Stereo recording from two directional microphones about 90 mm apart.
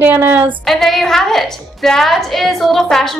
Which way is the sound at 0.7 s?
5° left (ahead or behind).